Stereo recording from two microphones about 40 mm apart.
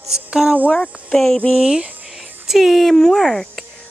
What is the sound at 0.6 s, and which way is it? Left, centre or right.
Speech, left.